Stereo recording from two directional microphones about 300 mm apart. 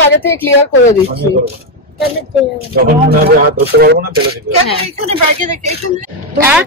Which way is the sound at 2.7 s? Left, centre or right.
Right.